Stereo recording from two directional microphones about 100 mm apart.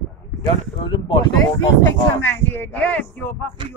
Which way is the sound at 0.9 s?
55° left (ahead or behind).